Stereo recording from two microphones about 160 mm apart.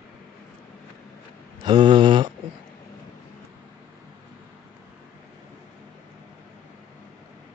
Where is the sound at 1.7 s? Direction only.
25° right (ahead or behind).